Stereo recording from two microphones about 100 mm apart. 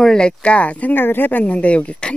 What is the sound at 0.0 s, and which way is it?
Speech, 5° left (ahead or behind).